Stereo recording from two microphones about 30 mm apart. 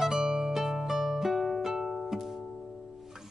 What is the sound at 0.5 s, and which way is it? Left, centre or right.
Music, centre.